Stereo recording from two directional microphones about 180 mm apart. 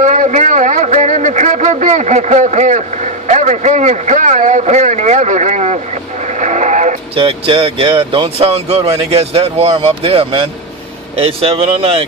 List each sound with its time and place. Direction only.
0.0 s a man's voice: 45° right (ahead or behind)
6.4 s radio: 40° right (ahead or behind)
7.2 s speech: 30° right (ahead or behind)